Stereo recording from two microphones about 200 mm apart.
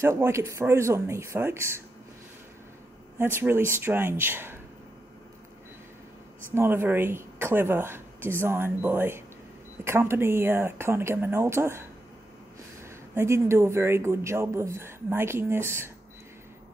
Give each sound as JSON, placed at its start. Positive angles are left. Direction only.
{"t": 0.0, "sound": "a woman's voice", "side_deg": -15}
{"t": 3.2, "sound": "a woman's voice", "side_deg": -10}
{"t": 6.5, "sound": "a woman's voice", "side_deg": -10}
{"t": 13.1, "sound": "a woman's voice", "side_deg": -15}